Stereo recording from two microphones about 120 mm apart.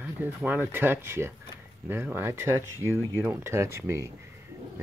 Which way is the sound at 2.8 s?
25° left (ahead or behind).